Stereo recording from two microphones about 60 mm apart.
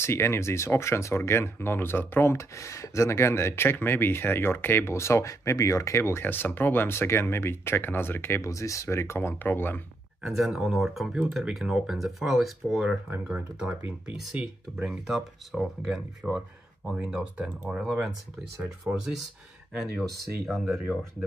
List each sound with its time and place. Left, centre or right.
0.0 s speech: left
8.5 s speech: left
10.2 s speech: centre
13.1 s speech: right
14.3 s speech: centre
20.4 s speech: centre